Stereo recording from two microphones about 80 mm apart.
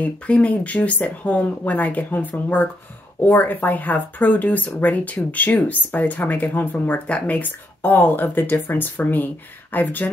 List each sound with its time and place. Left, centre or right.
0.0 s speech: centre